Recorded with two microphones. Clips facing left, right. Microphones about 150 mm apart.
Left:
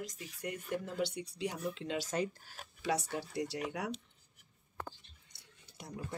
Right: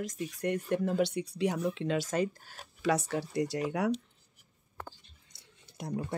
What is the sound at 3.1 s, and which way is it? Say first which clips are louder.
Speech: right 6 dB; 80° right.